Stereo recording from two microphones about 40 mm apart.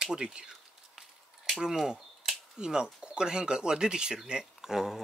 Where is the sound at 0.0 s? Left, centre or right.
Right.